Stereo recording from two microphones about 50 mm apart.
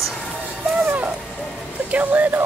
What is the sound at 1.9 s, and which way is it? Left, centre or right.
Speech, right.